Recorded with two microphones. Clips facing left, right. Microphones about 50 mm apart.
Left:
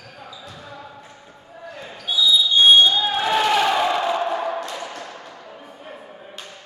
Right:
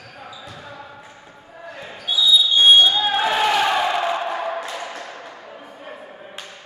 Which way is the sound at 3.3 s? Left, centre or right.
Centre.